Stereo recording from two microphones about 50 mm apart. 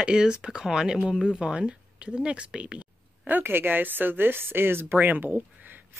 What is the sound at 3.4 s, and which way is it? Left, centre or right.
Speech, right.